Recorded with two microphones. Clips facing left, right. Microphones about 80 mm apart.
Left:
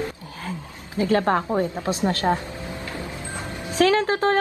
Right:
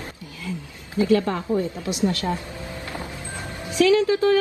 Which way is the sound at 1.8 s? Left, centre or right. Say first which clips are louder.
Even; left.